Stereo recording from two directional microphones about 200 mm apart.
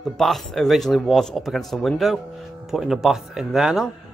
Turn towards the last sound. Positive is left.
turn(degrees=0)  # may be behind; listen again after turning